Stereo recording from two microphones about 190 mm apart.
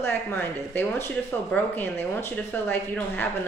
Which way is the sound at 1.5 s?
10° left (ahead or behind).